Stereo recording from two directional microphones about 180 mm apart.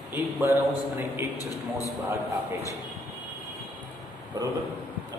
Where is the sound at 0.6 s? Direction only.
15° right (ahead or behind).